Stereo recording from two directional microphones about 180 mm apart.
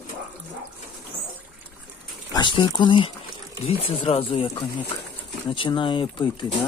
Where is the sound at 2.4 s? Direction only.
25° left (ahead or behind).